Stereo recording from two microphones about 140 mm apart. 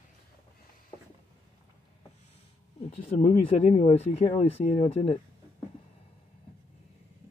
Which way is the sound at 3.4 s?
45° left (ahead or behind).